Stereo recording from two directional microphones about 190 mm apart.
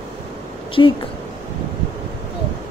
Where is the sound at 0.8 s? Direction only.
20° left (ahead or behind).